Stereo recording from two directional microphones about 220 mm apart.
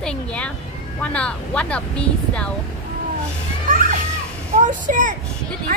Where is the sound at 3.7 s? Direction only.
35° right (ahead or behind).